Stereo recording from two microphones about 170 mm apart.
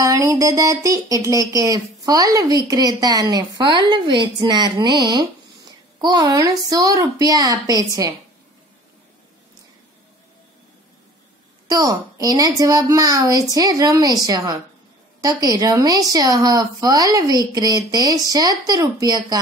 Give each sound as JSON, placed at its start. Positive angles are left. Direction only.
{"t": 0.0, "sound": "speech", "side_deg": -20}
{"t": 11.6, "sound": "speech", "side_deg": -20}